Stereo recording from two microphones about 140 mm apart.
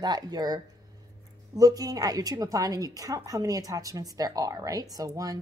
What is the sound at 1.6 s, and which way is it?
A woman's voice, 25° right (ahead or behind).